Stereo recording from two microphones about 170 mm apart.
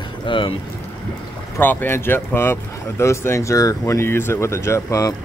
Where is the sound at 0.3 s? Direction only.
30° left (ahead or behind).